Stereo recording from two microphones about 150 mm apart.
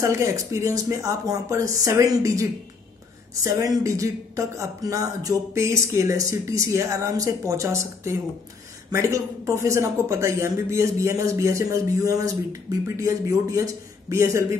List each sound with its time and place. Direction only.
0.0 s speech: 20° right (ahead or behind)
3.4 s speech: 20° right (ahead or behind)